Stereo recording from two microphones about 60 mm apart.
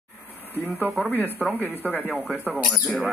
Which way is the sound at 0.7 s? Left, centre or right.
Right.